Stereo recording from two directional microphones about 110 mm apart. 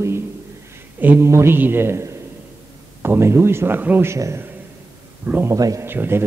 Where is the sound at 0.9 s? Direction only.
20° right (ahead or behind).